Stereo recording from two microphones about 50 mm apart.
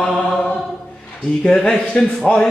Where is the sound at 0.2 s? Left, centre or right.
Centre.